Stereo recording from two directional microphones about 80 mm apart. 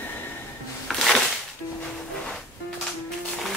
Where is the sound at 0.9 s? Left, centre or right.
Centre.